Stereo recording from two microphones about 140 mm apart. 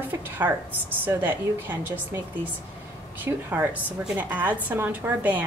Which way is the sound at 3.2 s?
15° right (ahead or behind).